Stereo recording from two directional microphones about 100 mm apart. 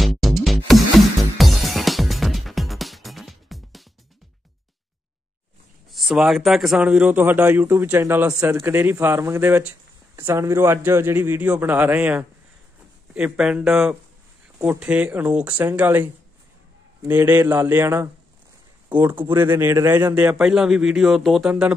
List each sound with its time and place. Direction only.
0.0 s music: centre (ahead or behind)
5.9 s speech: centre (ahead or behind)
6.8 s speech: 15° right (ahead or behind)
17.1 s speech: 20° right (ahead or behind)
19.3 s speech: 20° right (ahead or behind)
20.2 s speech: 15° right (ahead or behind)